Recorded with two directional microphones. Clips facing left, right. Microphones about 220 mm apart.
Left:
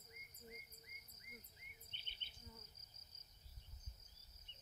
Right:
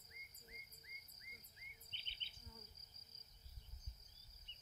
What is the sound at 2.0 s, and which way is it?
Insect, 50° left (ahead or behind).